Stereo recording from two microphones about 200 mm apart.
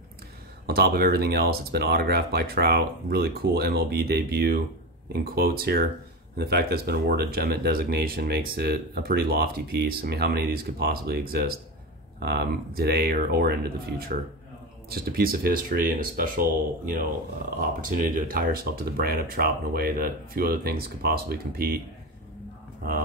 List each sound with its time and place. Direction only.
0.7 s speech: 50° right (ahead or behind)